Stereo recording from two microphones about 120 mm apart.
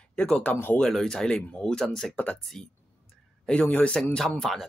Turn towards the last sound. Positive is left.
turn(degrees=5)  # may be behind; listen again after turning